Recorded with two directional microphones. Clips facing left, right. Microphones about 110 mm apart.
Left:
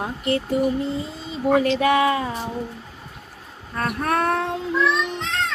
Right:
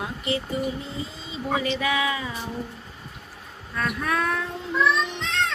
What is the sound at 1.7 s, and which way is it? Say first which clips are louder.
Music: left 7 dB; 50° left (ahead or behind).